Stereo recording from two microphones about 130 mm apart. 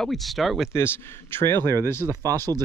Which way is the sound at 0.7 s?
20° left (ahead or behind).